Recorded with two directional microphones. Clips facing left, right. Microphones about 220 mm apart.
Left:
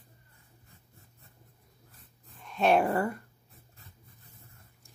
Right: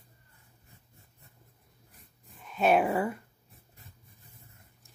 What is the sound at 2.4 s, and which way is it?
Speech, 5° right (ahead or behind).